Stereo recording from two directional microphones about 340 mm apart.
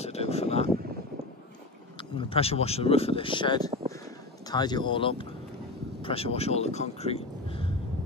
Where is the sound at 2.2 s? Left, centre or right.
Centre.